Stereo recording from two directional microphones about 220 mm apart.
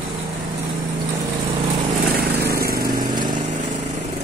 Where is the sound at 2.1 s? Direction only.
45° right (ahead or behind).